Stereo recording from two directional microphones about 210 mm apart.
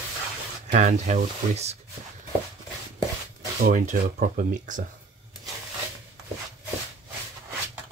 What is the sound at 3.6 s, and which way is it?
Speech, 35° right (ahead or behind).